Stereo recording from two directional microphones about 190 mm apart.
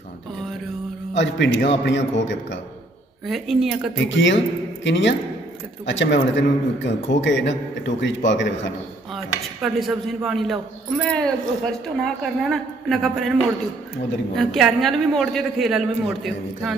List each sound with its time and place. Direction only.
1.1 s a man's voice: 75° left (ahead or behind)
3.3 s a woman's voice: centre (ahead or behind)
3.9 s a man's voice: 75° left (ahead or behind)
9.1 s a woman's voice: centre (ahead or behind)
14.3 s a woman's voice: centre (ahead or behind)